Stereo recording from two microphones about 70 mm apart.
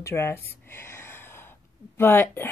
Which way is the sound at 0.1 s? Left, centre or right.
Left.